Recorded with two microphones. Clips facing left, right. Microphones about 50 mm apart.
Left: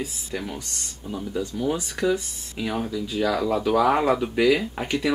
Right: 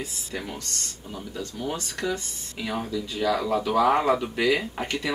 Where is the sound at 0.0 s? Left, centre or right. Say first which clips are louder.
Left 3 dB; centre.